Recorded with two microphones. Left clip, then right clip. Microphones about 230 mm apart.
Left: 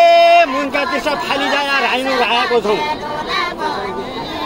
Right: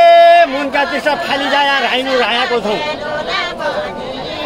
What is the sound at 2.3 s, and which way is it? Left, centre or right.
Speech, centre.